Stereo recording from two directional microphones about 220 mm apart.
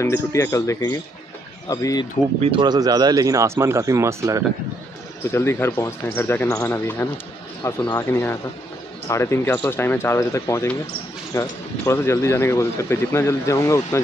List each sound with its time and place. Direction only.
0.0 s speech: 15° left (ahead or behind)
2.4 s speech: 20° right (ahead or behind)
5.3 s speech: 10° left (ahead or behind)